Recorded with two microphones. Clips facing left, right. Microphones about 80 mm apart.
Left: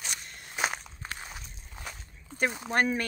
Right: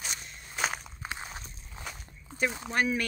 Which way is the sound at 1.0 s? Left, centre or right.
Centre.